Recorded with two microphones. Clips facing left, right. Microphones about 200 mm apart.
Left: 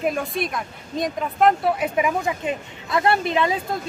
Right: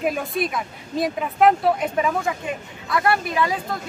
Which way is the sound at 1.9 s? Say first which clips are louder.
Even; 15° left (ahead or behind).